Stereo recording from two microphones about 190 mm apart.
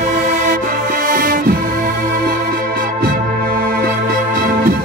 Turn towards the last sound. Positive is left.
turn(degrees=-50)  # may be behind; listen again after turning